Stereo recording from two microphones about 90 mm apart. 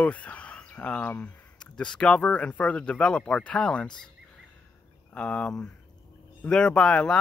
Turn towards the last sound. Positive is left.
turn(degrees=10)  # may be behind; listen again after turning